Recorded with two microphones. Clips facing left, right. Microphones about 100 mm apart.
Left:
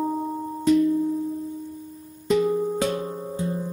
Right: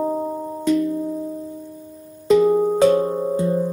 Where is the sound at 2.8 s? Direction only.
45° right (ahead or behind).